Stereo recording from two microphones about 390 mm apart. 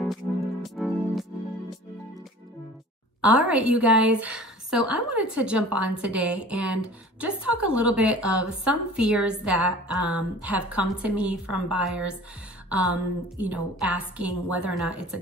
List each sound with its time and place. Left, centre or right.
0.0 s music: centre
3.2 s a woman's voice: centre